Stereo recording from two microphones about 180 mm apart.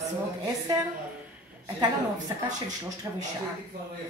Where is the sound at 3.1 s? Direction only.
20° right (ahead or behind).